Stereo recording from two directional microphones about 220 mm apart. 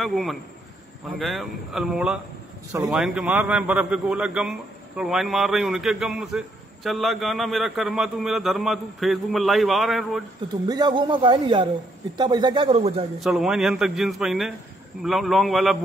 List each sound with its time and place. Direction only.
0.0 s a man's voice: centre (ahead or behind)
10.7 s a man's voice: 20° right (ahead or behind)
13.2 s a man's voice: centre (ahead or behind)